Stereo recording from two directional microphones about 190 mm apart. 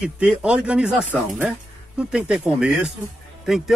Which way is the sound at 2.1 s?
5° right (ahead or behind).